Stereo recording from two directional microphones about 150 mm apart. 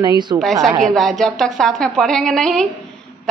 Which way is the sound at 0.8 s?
Centre (ahead or behind).